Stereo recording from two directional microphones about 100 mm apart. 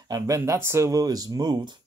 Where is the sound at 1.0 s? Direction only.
40° right (ahead or behind).